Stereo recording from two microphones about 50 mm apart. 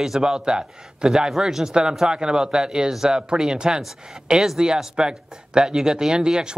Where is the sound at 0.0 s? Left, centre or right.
Centre.